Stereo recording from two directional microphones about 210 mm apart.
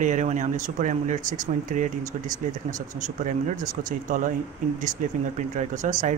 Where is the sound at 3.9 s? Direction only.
40° right (ahead or behind).